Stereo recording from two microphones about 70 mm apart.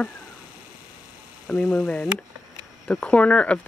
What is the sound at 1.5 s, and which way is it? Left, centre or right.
Speech, centre.